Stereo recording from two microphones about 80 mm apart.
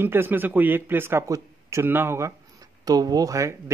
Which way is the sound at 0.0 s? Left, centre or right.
Right.